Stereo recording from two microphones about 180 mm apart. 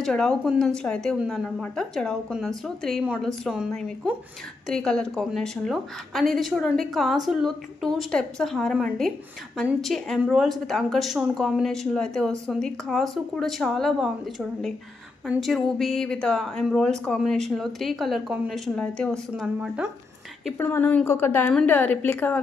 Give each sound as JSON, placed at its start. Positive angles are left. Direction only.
{"t": 0.0, "sound": "a woman's voice", "side_deg": 5}
{"t": 20.5, "sound": "a woman's voice", "side_deg": 10}